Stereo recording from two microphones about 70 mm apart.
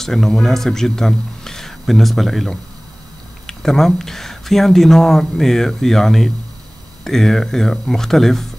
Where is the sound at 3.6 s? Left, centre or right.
Centre.